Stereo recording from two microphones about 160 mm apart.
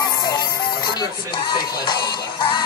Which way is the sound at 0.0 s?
25° left (ahead or behind).